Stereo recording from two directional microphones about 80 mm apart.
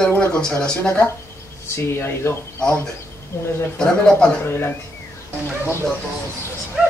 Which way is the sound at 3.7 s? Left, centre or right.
Centre.